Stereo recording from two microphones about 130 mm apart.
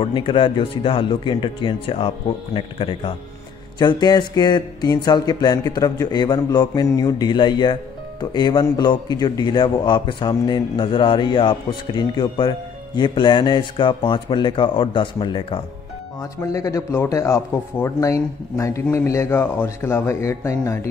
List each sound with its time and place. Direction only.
0.0 s speech: 40° left (ahead or behind)
16.2 s a man's voice: 25° left (ahead or behind)